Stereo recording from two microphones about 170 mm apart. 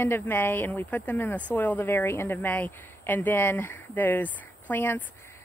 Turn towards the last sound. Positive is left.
turn(degrees=10)  # may be behind; listen again after turning